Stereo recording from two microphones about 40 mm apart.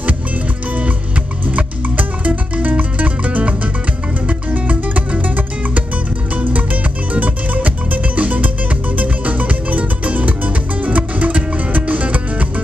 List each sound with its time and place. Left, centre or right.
1.5 s music: right